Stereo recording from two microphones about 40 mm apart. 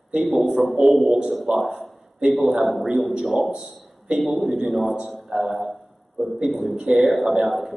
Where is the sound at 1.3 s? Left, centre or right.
Centre.